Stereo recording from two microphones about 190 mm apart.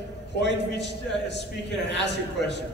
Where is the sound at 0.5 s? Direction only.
65° left (ahead or behind).